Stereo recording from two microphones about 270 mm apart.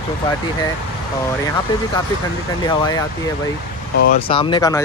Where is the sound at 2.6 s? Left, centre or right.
Centre.